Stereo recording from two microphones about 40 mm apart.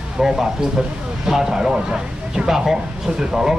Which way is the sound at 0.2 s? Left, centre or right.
Centre.